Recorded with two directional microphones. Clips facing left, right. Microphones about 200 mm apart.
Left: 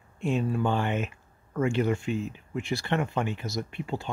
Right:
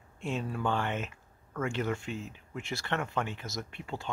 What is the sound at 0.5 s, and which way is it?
Speech, 15° left (ahead or behind).